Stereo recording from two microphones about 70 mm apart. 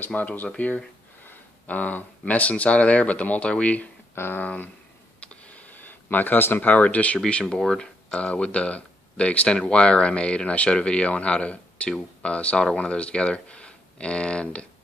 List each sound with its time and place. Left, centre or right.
0.0 s speech: left
4.1 s speech: left
5.2 s a sound: centre
7.2 s speech: centre